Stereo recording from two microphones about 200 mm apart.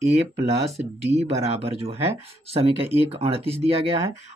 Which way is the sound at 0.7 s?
30° right (ahead or behind).